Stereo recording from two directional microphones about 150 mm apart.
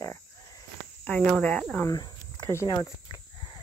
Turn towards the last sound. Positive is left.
turn(degrees=30)  # may be behind; listen again after turning